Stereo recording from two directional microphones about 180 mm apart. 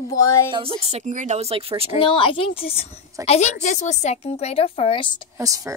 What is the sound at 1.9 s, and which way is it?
A woman's voice, 30° left (ahead or behind).